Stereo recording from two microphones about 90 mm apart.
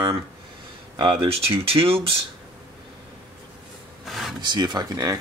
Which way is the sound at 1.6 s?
90° right.